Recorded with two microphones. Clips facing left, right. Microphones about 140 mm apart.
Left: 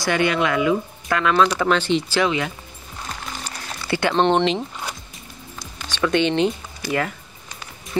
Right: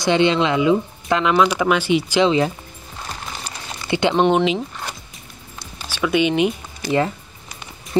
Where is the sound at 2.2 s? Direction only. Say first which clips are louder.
Right 5 dB; 30° right (ahead or behind).